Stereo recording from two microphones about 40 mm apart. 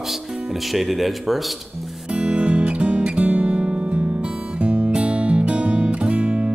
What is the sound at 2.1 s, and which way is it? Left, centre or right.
Music, right.